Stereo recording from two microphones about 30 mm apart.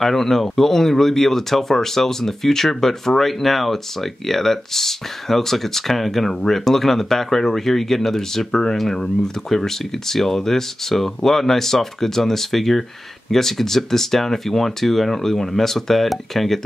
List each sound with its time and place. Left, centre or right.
0.0 s speech: centre
8.5 s speech: left